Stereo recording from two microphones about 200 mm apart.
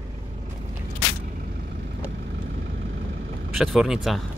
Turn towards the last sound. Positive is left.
turn(degrees=0)  # may be behind; listen again after turning